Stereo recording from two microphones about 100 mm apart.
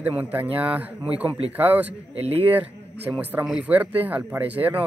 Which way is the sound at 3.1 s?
10° right (ahead or behind).